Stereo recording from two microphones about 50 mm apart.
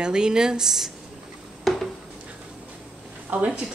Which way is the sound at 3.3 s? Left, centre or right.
Right.